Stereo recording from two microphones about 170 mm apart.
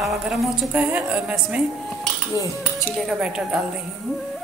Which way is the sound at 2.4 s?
20° left (ahead or behind).